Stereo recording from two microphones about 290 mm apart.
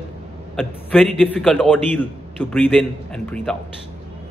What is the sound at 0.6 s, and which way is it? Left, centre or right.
A man's voice, centre.